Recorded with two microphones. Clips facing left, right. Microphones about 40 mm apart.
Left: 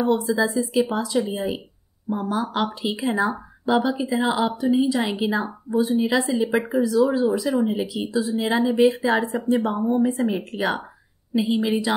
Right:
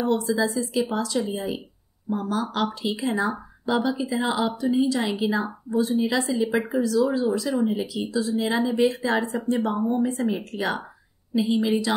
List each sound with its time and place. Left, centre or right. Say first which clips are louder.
0.3 s speech: left 2 dB; centre